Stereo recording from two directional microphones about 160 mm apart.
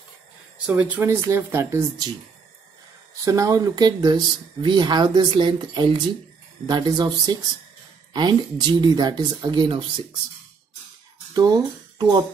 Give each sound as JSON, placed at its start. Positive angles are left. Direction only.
{"t": 0.7, "sound": "speech", "side_deg": -10}
{"t": 3.3, "sound": "speech", "side_deg": -20}
{"t": 11.3, "sound": "speech", "side_deg": -25}